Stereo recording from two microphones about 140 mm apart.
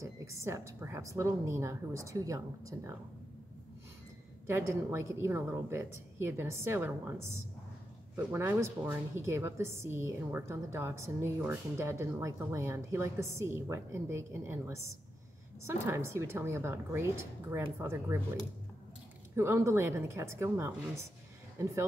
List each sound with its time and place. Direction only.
0.0 s a woman's voice: 20° right (ahead or behind)
4.5 s a woman's voice: 20° right (ahead or behind)
8.2 s a woman's voice: 15° right (ahead or behind)